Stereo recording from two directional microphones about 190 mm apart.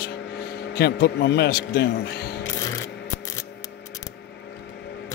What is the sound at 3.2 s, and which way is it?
Scissors, 20° left (ahead or behind).